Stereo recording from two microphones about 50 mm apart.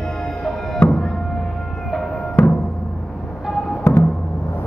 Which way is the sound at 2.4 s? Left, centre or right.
Left.